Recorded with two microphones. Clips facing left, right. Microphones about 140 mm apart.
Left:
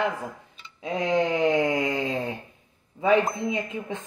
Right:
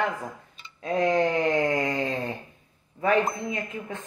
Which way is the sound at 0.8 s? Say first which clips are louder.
Right 1 dB; 15° left (ahead or behind).